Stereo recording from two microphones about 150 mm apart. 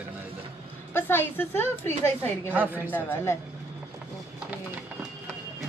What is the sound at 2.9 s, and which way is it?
Speech, 10° left (ahead or behind).